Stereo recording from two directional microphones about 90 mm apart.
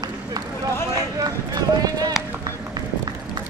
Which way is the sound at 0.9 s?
45° right (ahead or behind).